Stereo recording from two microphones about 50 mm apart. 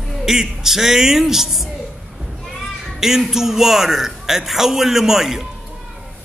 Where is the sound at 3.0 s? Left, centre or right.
Centre.